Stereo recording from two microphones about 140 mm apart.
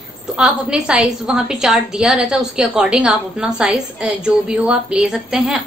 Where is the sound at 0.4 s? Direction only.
5° right (ahead or behind).